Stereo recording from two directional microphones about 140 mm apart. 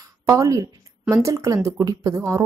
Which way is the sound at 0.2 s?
25° right (ahead or behind).